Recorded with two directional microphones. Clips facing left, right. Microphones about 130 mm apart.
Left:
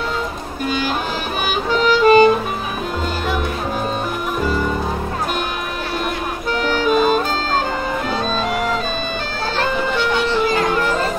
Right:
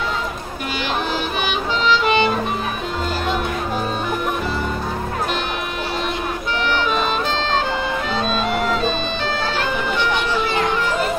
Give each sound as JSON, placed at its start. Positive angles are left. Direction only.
{"t": 1.7, "sound": "music", "side_deg": 45}
{"t": 6.7, "sound": "music", "side_deg": 45}